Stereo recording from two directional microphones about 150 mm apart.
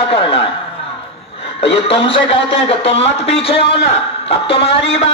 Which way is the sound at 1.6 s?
40° left (ahead or behind).